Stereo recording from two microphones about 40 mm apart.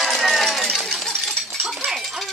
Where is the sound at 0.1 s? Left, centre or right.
Centre.